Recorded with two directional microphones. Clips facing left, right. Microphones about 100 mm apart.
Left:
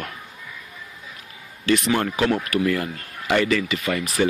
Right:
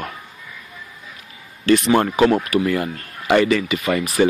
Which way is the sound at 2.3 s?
25° right (ahead or behind).